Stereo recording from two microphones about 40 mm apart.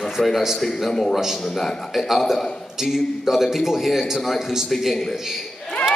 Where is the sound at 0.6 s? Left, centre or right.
Centre.